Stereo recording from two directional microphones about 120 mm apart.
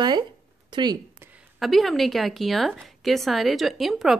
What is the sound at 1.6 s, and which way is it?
A woman's voice, centre (ahead or behind).